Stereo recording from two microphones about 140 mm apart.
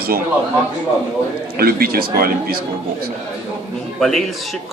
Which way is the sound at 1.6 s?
90° right.